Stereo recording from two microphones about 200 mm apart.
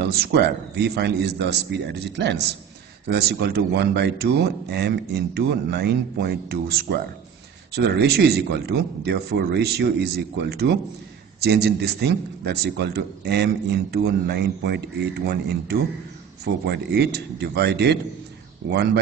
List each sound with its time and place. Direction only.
0.0 s a man's voice: 55° right (ahead or behind)